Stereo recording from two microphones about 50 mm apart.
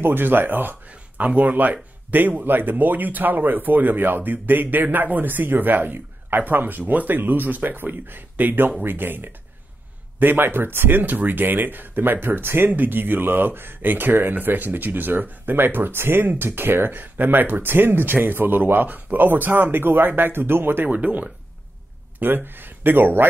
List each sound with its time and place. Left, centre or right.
0.0 s speech: right
22.2 s speech: right